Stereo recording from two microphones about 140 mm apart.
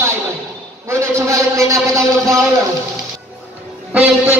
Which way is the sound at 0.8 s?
20° right (ahead or behind).